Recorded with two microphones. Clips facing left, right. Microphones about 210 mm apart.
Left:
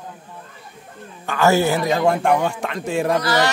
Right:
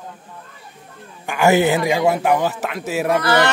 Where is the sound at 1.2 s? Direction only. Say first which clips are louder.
Right 2 dB; 15° right (ahead or behind).